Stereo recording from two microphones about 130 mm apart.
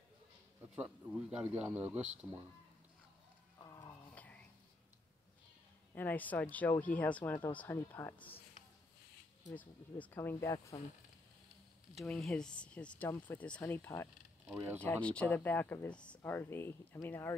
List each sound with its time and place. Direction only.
0.7 s speech: 10° right (ahead or behind)
3.5 s a sound: 30° left (ahead or behind)
4.1 s a sound: 10° left (ahead or behind)
5.9 s speech: 15° left (ahead or behind)
9.6 s speech: 10° left (ahead or behind)
11.9 s speech: centre (ahead or behind)
14.5 s speech: 15° right (ahead or behind)
14.8 s speech: 10° left (ahead or behind)